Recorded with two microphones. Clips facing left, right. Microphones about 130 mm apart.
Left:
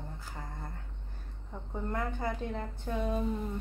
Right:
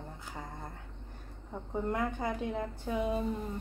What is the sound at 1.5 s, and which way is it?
Speech, 10° right (ahead or behind).